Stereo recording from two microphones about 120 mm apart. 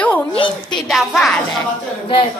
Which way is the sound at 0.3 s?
45° left (ahead or behind).